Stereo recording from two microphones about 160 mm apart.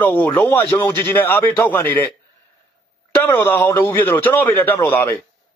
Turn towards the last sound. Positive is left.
turn(degrees=15)  # may be behind; listen again after turning